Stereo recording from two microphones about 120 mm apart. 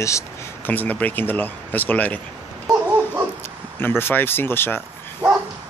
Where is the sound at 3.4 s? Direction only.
20° left (ahead or behind).